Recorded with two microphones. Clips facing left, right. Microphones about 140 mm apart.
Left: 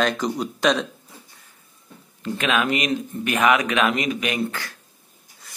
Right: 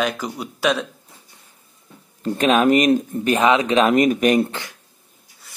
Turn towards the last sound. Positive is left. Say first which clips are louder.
# right 9 dB
turn(degrees=-45)  # may be behind; listen again after turning